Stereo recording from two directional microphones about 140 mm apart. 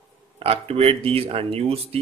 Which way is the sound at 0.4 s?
45° right (ahead or behind).